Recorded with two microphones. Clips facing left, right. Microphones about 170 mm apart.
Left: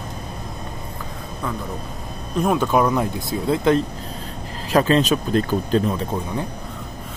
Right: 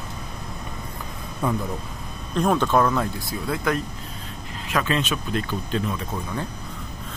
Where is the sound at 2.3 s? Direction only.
5° left (ahead or behind); by 6.2 s 30° left (ahead or behind).